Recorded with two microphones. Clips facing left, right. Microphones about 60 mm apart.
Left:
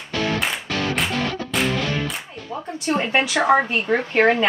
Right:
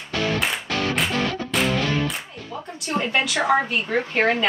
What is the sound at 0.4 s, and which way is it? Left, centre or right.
Music, centre.